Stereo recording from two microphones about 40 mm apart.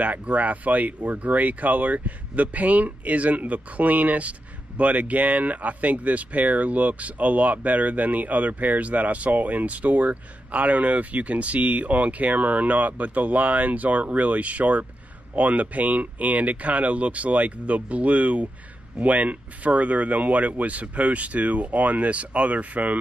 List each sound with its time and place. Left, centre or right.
0.0 s speech: right